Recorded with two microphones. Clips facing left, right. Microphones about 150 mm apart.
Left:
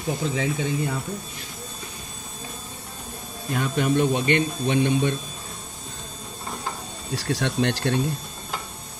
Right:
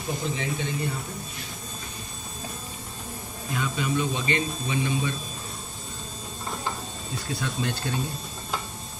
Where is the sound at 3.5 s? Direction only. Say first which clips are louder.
Left 5 dB; 60° left (ahead or behind).